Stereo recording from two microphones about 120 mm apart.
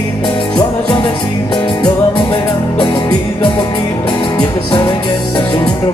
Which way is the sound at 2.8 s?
40° left (ahead or behind).